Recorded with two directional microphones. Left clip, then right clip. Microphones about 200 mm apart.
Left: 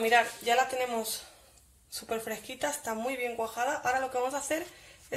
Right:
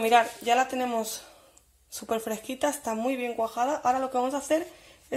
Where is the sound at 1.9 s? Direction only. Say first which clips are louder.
Right 4 dB; 30° right (ahead or behind).